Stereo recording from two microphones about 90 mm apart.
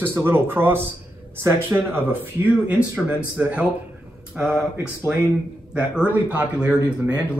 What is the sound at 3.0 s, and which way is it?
Speech, 15° right (ahead or behind).